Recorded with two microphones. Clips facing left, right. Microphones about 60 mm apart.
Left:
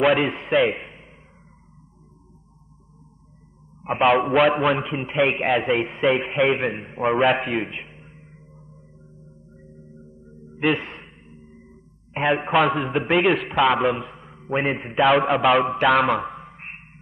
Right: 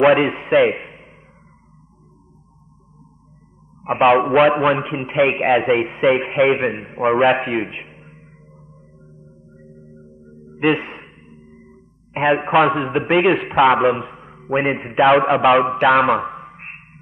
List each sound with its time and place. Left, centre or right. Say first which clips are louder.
0.2 s a man's voice: right 5 dB; centre
3.8 s a man's voice: right 4 dB; centre
8.1 s chirp tone: right 2 dB; centre
10.3 s a sound: right 4 dB; centre
12.4 s a man's voice: right 3 dB; centre
16.4 s a sound: right 3 dB; centre